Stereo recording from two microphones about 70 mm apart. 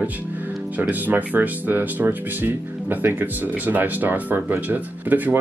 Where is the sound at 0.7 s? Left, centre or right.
Right.